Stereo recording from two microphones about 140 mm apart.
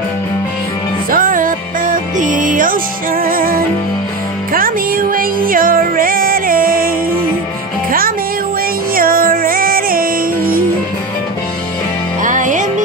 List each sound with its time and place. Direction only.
1.1 s music: 75° right (ahead or behind)
8.9 s music: 90° right
12.2 s music: 65° right (ahead or behind)